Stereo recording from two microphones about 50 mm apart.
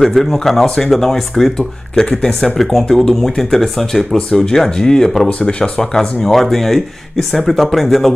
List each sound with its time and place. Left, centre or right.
0.0 s speech: centre
5.9 s speech: centre